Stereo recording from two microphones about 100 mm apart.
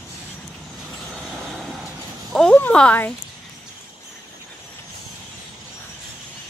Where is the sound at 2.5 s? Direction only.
15° left (ahead or behind).